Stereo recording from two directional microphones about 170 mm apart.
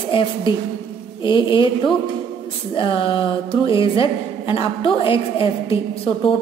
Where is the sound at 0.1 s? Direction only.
30° left (ahead or behind).